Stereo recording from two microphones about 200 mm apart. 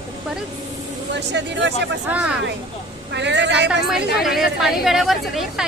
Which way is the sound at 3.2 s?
60° right (ahead or behind).